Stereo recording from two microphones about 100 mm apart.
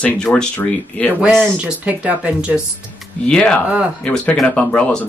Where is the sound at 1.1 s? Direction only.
15° right (ahead or behind).